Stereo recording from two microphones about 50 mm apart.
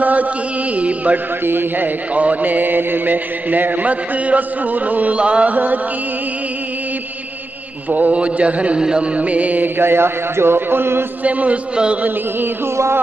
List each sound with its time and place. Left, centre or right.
0.0 s mantra: right
0.7 s a man's voice: right
1.4 s a man's voice: right
2.1 s mantra: right
7.9 s a man's voice: right
9.8 s a man's voice: right
11.2 s a man's voice: right
12.7 s a sound: right